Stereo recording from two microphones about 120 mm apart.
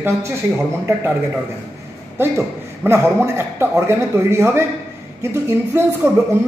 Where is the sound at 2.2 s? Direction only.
20° right (ahead or behind).